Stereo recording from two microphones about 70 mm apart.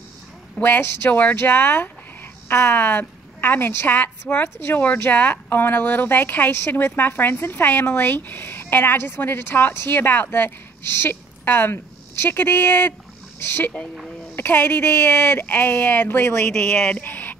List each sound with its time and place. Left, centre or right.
0.6 s a woman's voice: left
16.4 s speech: centre; by 17.4 s left